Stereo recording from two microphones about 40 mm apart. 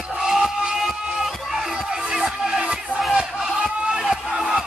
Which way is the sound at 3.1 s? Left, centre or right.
Centre.